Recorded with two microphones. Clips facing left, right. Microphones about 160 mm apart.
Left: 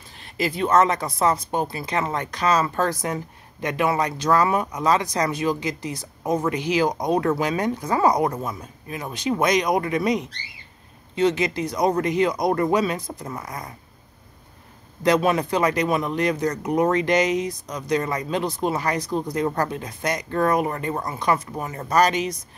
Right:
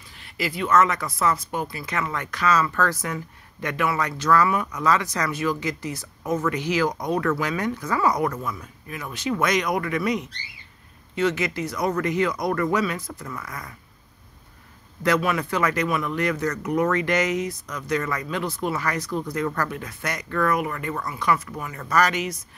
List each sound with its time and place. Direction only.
0.4 s speech: 25° left (ahead or behind)
0.7 s speech: 35° left (ahead or behind)
4.5 s speech: 30° left (ahead or behind)
4.8 s speech: 15° left (ahead or behind)
9.3 s speech: 20° left (ahead or behind)
12.6 s speech: 30° left (ahead or behind)
15.1 s speech: 30° left (ahead or behind)
16.4 s speech: 30° left (ahead or behind)
18.0 s speech: 30° left (ahead or behind)
19.3 s speech: 30° left (ahead or behind)
19.8 s speech: 20° left (ahead or behind)
20.2 s speech: 30° left (ahead or behind)
21.9 s speech: 20° left (ahead or behind)